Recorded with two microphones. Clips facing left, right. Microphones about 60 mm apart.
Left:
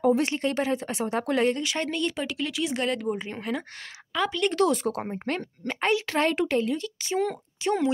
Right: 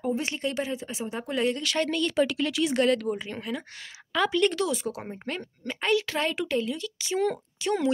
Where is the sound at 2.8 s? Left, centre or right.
Centre.